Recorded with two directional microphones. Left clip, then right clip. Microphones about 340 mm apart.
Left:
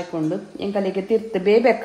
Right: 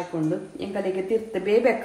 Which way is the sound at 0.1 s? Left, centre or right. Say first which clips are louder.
Left 3 dB; left.